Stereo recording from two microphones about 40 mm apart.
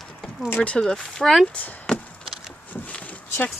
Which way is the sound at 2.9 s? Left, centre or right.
Left.